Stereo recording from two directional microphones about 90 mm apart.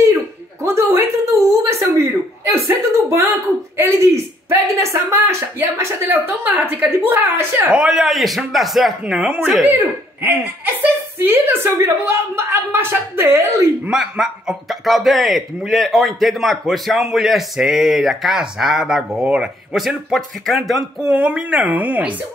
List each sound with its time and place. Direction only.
0.6 s a sound: 35° right (ahead or behind)
3.7 s speech: 30° right (ahead or behind)
7.7 s a man's voice: 5° right (ahead or behind)
10.2 s a woman's voice: 25° right (ahead or behind)
13.8 s a man's voice: 5° right (ahead or behind)
21.1 s speech: 15° right (ahead or behind)